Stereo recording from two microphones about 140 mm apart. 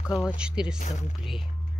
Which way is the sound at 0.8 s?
60° left (ahead or behind).